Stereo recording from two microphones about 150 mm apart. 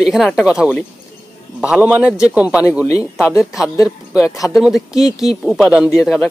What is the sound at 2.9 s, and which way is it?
Speech, 20° left (ahead or behind).